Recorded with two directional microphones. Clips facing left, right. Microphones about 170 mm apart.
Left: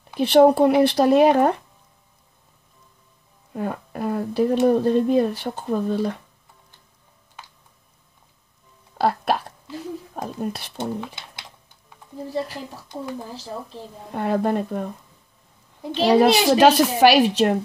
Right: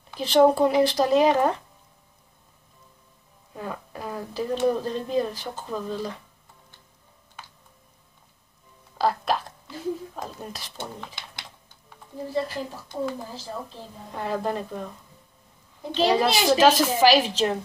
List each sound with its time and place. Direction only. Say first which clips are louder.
0.2 s speech: left 4 dB; 60° left (ahead or behind)
3.5 s speech: left 7 dB; 55° left (ahead or behind)
8.9 s speech: left 3 dB; 55° left (ahead or behind)
14.1 s speech: left 6 dB; 55° left (ahead or behind)
15.9 s speech: left 5 dB; 55° left (ahead or behind)